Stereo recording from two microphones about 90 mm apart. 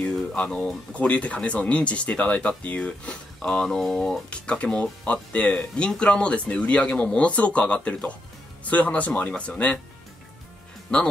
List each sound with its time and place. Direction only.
0.0 s speech: 10° left (ahead or behind)
10.9 s speech: 10° left (ahead or behind)